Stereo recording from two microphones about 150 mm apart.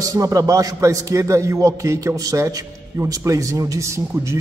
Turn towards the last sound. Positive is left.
turn(degrees=-20)  # may be behind; listen again after turning